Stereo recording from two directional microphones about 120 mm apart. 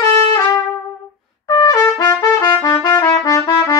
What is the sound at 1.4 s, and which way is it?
Trumpet, 35° left (ahead or behind).